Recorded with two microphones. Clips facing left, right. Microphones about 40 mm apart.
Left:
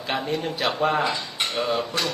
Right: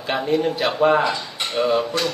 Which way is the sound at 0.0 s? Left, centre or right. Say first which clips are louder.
Right 6 dB; centre.